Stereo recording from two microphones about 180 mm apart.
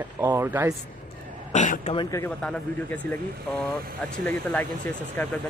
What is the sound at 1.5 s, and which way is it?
Speech, 45° left (ahead or behind).